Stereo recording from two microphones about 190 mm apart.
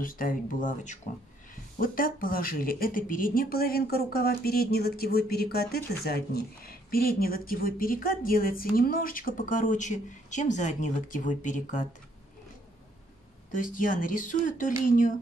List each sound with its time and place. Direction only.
0.0 s speech: 45° left (ahead or behind)
13.6 s speech: 45° left (ahead or behind)